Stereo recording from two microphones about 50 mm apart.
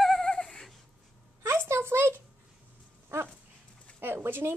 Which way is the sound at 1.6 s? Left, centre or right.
Right.